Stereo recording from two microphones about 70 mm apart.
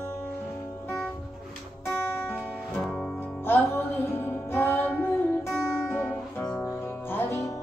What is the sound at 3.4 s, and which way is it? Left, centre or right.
Music, left.